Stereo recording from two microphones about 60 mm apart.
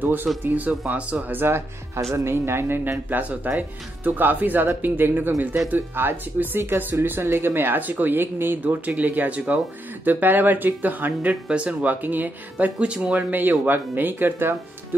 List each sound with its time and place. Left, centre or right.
0.0 s speech: right
1.3 s speech: right
3.1 s speech: right
8.6 s speech: right
12.7 s speech: centre
13.3 s speech: right